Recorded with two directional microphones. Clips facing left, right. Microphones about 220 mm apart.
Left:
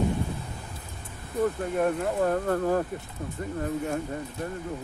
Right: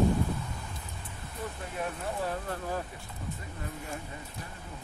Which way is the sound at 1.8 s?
50° left (ahead or behind).